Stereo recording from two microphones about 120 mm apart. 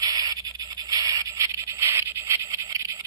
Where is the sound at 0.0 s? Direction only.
30° right (ahead or behind).